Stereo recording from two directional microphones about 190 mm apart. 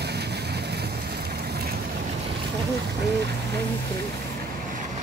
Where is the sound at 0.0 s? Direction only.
60° right (ahead or behind).